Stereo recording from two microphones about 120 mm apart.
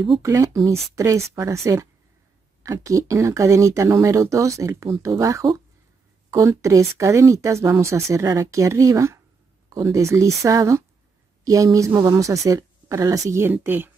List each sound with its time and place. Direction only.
0.2 s speech: 25° right (ahead or behind)